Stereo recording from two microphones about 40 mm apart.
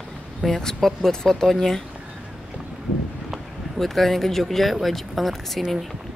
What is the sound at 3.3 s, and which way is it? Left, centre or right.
Speech, centre.